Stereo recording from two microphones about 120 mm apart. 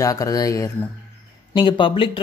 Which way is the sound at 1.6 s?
45° left (ahead or behind).